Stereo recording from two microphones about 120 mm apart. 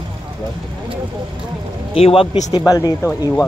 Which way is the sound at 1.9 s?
50° left (ahead or behind).